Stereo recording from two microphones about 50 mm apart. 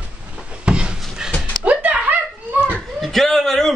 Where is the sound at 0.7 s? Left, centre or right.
Centre.